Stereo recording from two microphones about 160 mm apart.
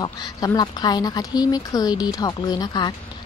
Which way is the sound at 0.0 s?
25° left (ahead or behind).